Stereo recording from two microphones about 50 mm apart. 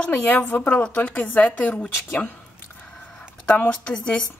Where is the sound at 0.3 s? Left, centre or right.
Left.